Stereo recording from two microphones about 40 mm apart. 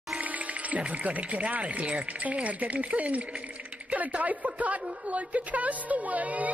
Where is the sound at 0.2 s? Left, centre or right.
Right.